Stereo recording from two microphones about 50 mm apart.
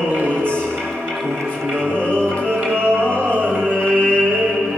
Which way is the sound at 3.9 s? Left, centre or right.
Left.